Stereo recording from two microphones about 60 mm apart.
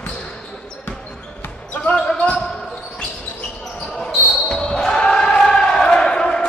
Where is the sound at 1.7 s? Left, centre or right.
Left.